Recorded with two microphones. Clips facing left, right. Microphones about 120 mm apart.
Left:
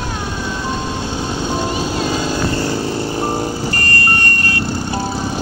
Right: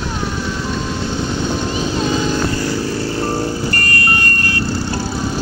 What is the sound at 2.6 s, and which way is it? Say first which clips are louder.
Vehicle: even; 25° left (ahead or behind).